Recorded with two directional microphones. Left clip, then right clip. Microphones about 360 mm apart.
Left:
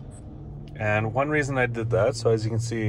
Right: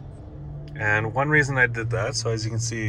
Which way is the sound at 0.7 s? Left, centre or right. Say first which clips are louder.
Right 2 dB; centre.